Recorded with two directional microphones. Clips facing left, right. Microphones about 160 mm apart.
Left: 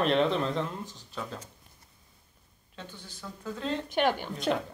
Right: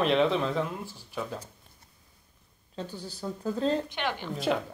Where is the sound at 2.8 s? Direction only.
35° right (ahead or behind).